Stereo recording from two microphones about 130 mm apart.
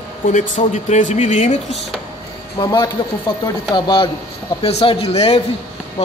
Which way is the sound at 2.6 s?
30° left (ahead or behind).